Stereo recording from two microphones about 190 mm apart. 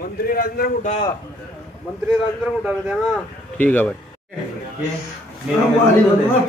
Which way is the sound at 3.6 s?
10° left (ahead or behind).